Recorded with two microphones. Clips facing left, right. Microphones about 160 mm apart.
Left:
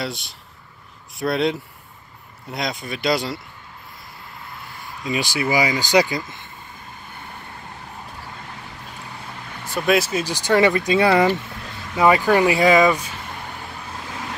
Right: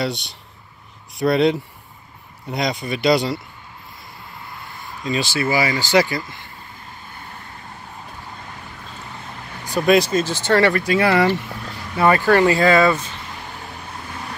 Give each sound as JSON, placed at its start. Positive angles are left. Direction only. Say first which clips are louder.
{"t": 0.0, "sound": "speech", "louder": "right 5 dB", "side_deg": 0}
{"t": 5.0, "sound": "speech", "louder": "right 1 dB", "side_deg": 15}
{"t": 9.7, "sound": "speech", "louder": "right 4 dB", "side_deg": 0}